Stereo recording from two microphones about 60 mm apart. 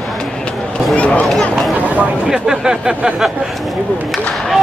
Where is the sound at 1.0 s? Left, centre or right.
Left.